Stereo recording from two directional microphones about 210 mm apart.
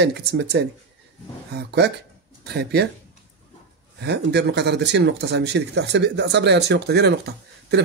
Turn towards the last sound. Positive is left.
turn(degrees=-50)  # may be behind; listen again after turning